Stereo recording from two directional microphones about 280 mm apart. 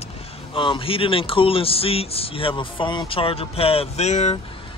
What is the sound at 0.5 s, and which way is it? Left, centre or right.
A man's voice, centre.